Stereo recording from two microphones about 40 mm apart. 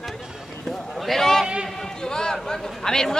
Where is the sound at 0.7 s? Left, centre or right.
Centre.